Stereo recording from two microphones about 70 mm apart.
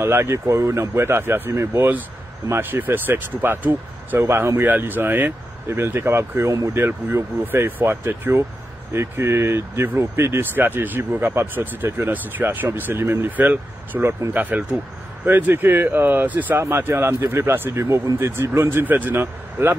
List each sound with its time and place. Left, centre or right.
0.0 s speech: right
4.6 s speech: right
13.4 s speech: right